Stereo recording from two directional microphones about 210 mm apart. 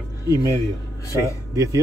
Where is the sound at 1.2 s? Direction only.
15° right (ahead or behind).